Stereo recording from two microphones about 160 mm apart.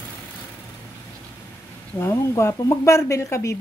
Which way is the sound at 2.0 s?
15° left (ahead or behind).